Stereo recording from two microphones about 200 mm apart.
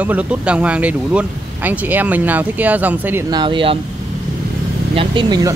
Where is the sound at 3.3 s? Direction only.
25° right (ahead or behind).